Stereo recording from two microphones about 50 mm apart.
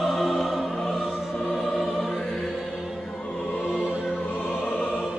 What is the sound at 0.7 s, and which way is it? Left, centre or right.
Music, centre.